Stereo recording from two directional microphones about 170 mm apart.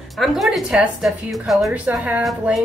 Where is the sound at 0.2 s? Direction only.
Centre (ahead or behind).